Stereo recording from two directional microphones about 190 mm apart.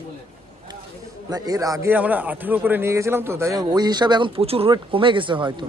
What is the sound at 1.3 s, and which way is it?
A man's voice, 20° right (ahead or behind).